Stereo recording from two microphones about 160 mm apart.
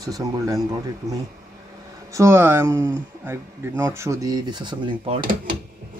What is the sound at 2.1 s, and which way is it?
Speech, 20° right (ahead or behind).